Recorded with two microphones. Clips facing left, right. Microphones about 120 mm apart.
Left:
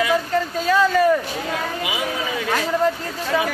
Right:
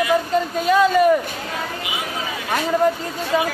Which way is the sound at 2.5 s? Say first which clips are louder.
Right 3 dB; 20° right (ahead or behind).